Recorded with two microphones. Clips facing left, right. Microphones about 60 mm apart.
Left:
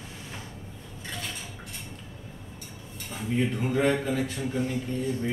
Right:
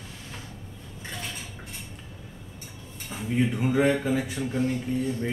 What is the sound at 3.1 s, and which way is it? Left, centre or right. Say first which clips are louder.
Speech: right 2 dB; centre.